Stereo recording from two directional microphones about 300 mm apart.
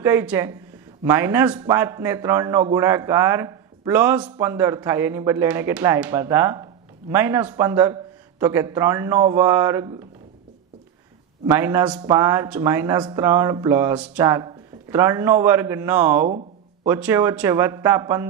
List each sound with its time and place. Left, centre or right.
0.0 s a man's voice: centre
11.4 s a man's voice: centre